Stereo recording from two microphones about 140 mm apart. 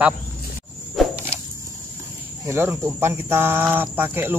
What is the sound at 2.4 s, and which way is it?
Speech, 20° right (ahead or behind).